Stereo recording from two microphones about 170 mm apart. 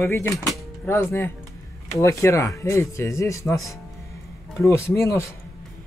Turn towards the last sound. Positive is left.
turn(degrees=15)  # may be behind; listen again after turning